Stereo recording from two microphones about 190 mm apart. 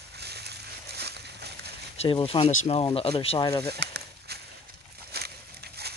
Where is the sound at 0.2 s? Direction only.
60° right (ahead or behind).